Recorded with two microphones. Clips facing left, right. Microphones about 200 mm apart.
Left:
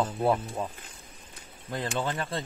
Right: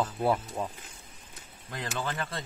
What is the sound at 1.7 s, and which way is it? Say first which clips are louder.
Speech: left 4 dB; 30° left (ahead or behind).